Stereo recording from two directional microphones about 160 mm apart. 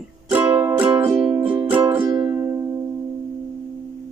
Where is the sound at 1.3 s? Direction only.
30° right (ahead or behind).